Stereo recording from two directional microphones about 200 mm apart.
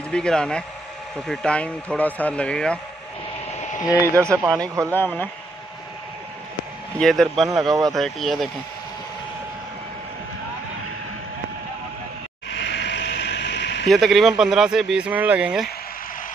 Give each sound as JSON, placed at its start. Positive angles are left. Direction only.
{"t": 0.1, "sound": "speech", "side_deg": 5}
{"t": 4.1, "sound": "a man's voice", "side_deg": -15}
{"t": 4.9, "sound": "speech", "side_deg": 10}
{"t": 7.0, "sound": "speech", "side_deg": 0}
{"t": 12.4, "sound": "a sound", "side_deg": 60}
{"t": 13.8, "sound": "speech", "side_deg": 0}